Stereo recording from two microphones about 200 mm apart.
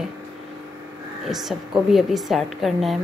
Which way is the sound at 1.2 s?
Centre (ahead or behind).